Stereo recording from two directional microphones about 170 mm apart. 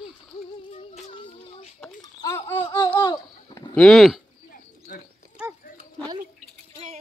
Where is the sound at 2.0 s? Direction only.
20° left (ahead or behind).